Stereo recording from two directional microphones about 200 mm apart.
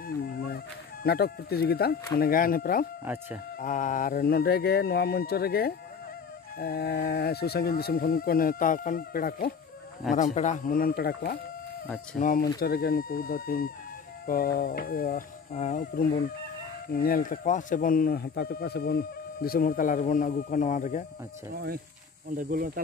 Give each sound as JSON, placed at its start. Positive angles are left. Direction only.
{"t": 0.2, "sound": "music", "side_deg": 50}
{"t": 1.0, "sound": "speech", "side_deg": 50}
{"t": 22.4, "sound": "speech", "side_deg": -45}